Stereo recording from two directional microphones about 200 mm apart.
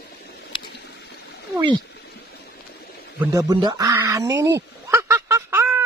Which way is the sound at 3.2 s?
15° right (ahead or behind).